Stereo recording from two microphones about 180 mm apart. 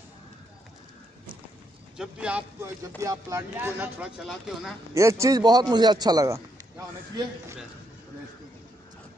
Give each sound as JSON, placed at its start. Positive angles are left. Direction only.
{"t": 2.0, "sound": "speech", "side_deg": -5}
{"t": 4.9, "sound": "a man's voice", "side_deg": -15}